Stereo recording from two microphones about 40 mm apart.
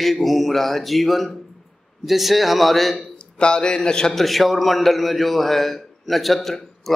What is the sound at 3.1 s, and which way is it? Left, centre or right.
A man's voice, left.